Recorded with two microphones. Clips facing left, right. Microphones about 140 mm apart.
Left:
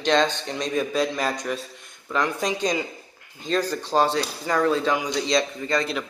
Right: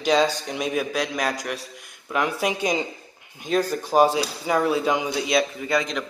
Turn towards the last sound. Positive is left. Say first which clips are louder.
# right 1 dB
turn(degrees=-5)  # may be behind; listen again after turning